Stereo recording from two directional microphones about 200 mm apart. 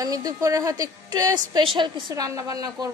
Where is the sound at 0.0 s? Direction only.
20° right (ahead or behind).